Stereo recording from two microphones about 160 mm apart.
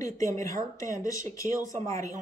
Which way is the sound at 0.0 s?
20° left (ahead or behind).